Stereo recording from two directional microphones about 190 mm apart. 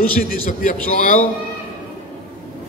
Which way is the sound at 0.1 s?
45° left (ahead or behind).